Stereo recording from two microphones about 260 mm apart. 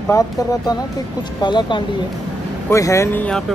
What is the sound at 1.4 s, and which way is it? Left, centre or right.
Speech, centre.